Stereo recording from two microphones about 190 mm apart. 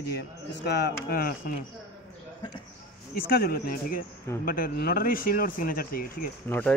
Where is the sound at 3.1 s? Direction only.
50° left (ahead or behind).